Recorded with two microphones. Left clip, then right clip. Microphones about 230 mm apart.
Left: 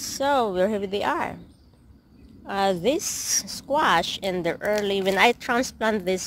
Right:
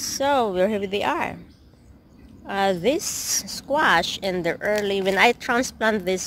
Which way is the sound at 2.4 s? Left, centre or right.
Centre.